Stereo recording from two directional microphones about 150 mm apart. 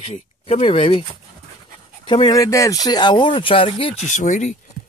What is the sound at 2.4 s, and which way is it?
Speech, 20° left (ahead or behind).